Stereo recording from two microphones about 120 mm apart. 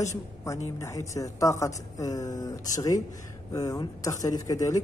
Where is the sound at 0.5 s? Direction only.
25° left (ahead or behind).